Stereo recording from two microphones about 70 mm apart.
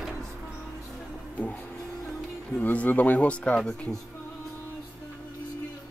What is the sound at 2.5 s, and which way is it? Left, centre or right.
Speech, left.